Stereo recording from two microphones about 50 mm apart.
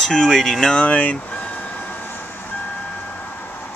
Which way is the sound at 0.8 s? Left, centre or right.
Left.